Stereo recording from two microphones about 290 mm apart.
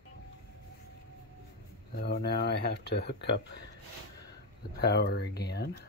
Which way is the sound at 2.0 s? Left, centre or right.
Left.